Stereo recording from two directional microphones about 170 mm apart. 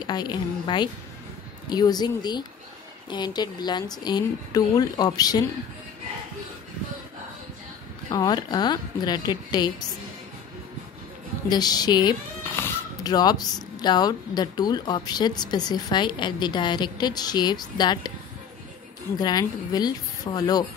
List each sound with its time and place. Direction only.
0.0 s speech: 25° left (ahead or behind)
8.1 s speech: 25° left (ahead or behind)
11.4 s speech: 25° left (ahead or behind)
19.1 s speech: 25° left (ahead or behind)